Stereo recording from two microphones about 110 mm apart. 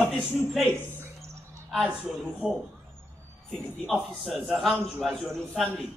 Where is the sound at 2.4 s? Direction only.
10° right (ahead or behind).